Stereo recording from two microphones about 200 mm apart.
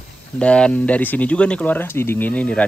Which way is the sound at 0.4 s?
5° left (ahead or behind).